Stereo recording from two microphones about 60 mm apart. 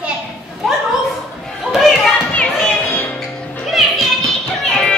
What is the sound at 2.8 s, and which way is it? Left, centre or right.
Music, left.